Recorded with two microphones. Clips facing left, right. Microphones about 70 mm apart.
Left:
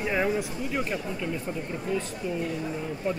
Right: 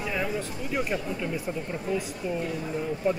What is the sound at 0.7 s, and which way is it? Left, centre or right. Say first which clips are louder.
Speech: right 2 dB; centre.